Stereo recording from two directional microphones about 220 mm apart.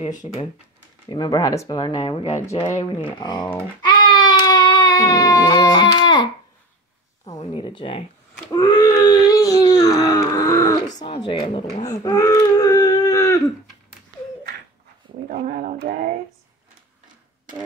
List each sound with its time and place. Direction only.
0.0 s speech: 30° left (ahead or behind)
1.0 s speech: 20° left (ahead or behind)
2.3 s speech: 15° left (ahead or behind)
3.8 s a sound: 20° left (ahead or behind)
7.3 s speech: 25° left (ahead or behind)
8.5 s a sound: 20° left (ahead or behind)
11.1 s speech: 25° left (ahead or behind)
11.9 s baby cry: 15° left (ahead or behind)
15.2 s speech: 35° right (ahead or behind)